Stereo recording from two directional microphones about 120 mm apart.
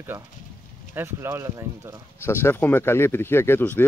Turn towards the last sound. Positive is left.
turn(degrees=15)  # may be behind; listen again after turning